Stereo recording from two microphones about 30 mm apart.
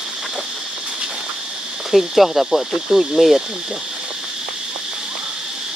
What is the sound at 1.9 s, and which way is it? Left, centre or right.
Speech, centre.